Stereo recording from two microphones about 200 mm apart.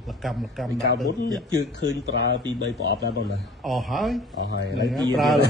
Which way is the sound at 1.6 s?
60° left (ahead or behind).